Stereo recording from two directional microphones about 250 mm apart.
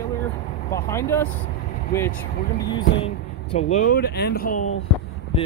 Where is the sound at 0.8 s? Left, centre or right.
Centre.